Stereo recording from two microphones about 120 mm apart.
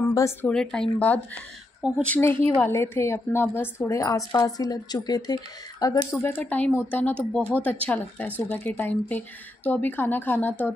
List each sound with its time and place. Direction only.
0.4 s a woman's voice: 5° left (ahead or behind); by 6.3 s 30° left (ahead or behind)
6.3 s speech: 15° left (ahead or behind)